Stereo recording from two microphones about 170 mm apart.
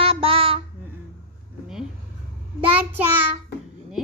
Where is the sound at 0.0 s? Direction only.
35° right (ahead or behind).